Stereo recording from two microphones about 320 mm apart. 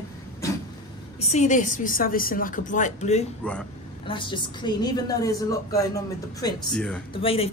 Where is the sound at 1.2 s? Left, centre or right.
Left; by 7.0 s centre.